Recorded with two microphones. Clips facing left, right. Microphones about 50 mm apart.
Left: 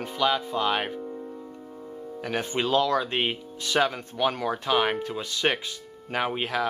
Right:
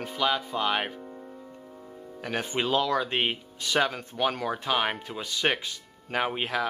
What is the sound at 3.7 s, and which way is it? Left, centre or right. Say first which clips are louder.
Speech: left 2 dB; centre.